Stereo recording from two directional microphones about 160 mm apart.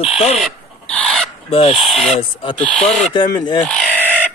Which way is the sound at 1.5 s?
35° left (ahead or behind).